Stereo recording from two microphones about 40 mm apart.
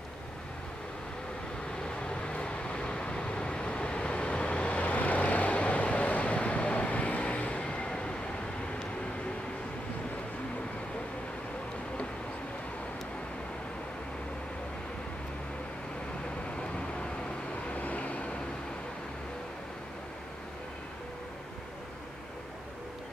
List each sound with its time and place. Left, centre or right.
2.0 s vehicle: left
7.6 s vehicle: left
16.5 s vehicle: left
17.6 s vehicle: left